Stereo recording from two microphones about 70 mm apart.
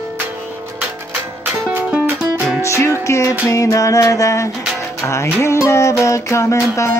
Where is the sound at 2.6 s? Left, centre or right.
Left.